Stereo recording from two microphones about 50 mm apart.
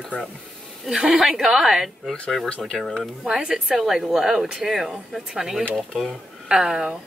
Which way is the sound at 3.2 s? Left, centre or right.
Centre.